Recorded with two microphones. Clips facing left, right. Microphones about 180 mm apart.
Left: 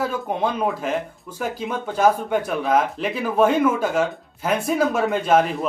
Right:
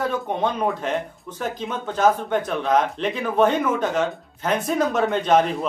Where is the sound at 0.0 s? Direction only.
5° left (ahead or behind).